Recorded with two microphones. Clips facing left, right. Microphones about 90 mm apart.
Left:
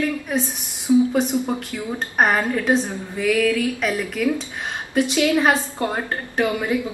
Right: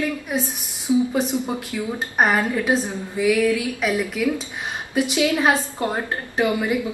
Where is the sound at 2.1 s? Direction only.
5° right (ahead or behind).